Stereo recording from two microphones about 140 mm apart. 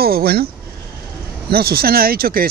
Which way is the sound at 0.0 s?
90° right.